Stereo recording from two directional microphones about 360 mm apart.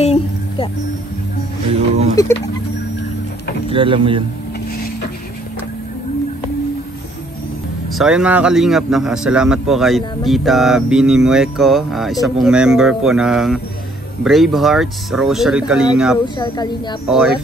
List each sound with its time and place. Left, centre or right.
0.0 s a sound: centre
2.1 s speech: centre
3.6 s speech: centre
7.9 s a man's voice: centre
16.3 s speech: centre
17.1 s a man's voice: centre